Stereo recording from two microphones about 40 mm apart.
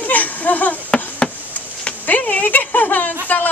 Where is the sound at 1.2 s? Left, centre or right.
Centre.